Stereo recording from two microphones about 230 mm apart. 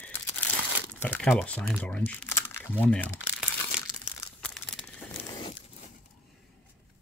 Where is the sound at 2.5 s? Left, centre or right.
Centre.